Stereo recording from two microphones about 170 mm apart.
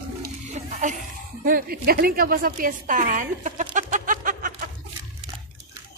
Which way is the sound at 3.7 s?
45° right (ahead or behind).